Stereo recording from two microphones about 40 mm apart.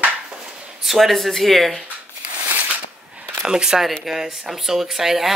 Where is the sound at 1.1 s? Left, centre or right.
Centre.